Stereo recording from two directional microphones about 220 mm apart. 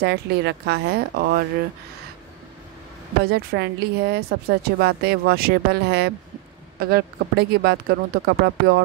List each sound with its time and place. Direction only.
0.0 s speech: 50° right (ahead or behind)
3.3 s speech: 50° right (ahead or behind)